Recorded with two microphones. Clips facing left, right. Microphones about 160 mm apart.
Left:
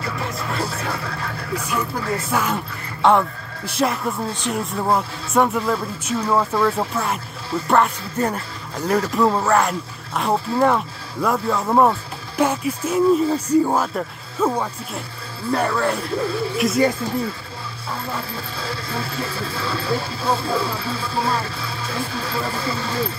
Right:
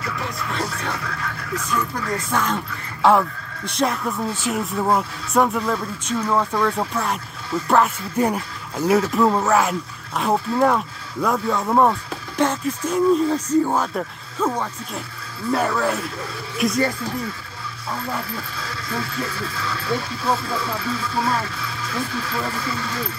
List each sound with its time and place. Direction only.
0.0 s music: 30° left (ahead or behind)
0.9 s television: 30° left (ahead or behind)
2.3 s speech: 10° left (ahead or behind)
3.0 s speech: centre (ahead or behind)
15.5 s speech: centre (ahead or behind)
18.6 s speech: 30° left (ahead or behind)